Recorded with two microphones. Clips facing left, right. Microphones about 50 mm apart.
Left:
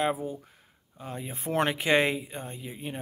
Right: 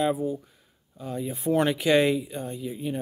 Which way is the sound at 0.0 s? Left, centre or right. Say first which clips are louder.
Right 3 dB; left.